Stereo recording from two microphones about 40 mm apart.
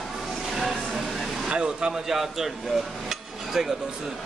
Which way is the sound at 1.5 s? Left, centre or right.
Right.